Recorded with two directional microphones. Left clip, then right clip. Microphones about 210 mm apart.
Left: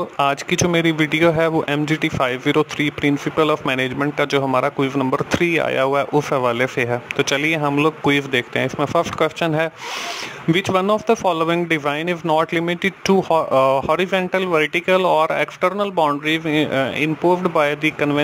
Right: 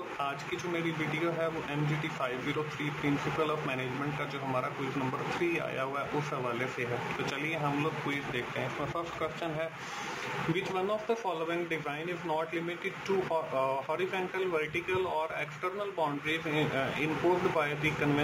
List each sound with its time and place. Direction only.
0.2 s speech: 55° left (ahead or behind)